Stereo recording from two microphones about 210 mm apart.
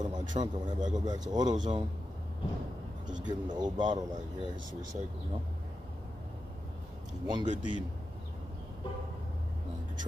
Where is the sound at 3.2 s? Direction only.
20° right (ahead or behind).